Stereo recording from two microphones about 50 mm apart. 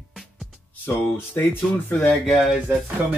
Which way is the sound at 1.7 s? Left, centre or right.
Left.